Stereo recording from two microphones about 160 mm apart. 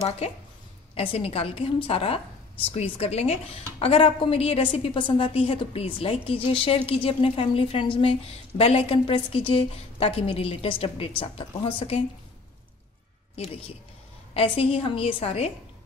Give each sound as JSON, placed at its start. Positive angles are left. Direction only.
{"t": 0.9, "sound": "a woman's voice", "side_deg": 35}
{"t": 13.4, "sound": "a woman's voice", "side_deg": 35}